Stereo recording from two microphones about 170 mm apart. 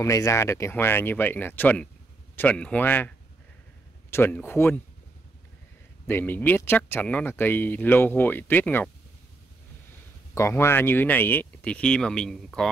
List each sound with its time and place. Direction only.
0.0 s speech: 20° left (ahead or behind)
4.1 s speech: 15° left (ahead or behind)
6.0 s speech: 10° left (ahead or behind)
10.3 s speech: 15° left (ahead or behind)